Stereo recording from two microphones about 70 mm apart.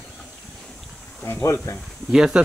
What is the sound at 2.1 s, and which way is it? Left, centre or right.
Speech, centre.